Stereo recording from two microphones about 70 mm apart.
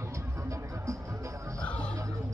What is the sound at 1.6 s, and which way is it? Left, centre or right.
Music, centre.